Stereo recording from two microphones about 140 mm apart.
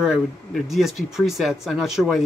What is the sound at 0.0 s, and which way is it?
Speech, 5° right (ahead or behind).